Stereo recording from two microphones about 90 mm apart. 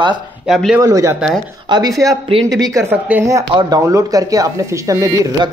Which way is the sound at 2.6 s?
35° right (ahead or behind).